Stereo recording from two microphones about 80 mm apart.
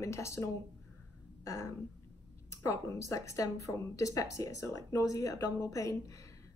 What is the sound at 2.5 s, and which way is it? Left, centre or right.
A woman's voice, left.